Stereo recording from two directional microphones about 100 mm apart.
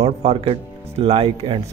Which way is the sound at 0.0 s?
90° right.